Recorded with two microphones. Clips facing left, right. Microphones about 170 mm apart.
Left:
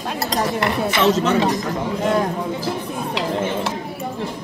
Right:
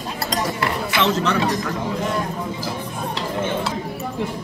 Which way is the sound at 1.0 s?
40° left (ahead or behind).